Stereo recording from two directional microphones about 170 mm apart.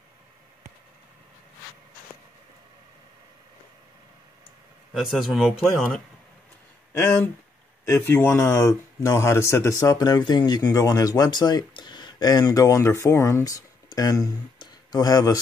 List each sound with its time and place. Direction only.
4.9 s speech: centre (ahead or behind)
6.9 s a sound: 15° left (ahead or behind)
7.8 s speech: 15° left (ahead or behind)